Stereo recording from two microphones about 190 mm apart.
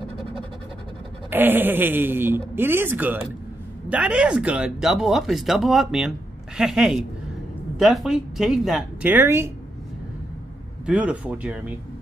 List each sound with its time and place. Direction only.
1.3 s a man's voice: 10° right (ahead or behind)
10.9 s a man's voice: 5° right (ahead or behind)